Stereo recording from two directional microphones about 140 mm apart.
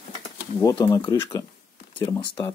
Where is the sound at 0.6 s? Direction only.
25° left (ahead or behind).